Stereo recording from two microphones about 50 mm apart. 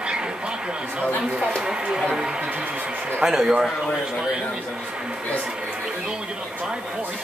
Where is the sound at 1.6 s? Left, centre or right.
Centre.